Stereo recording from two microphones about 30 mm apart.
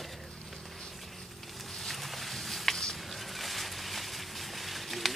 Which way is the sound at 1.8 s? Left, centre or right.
Centre.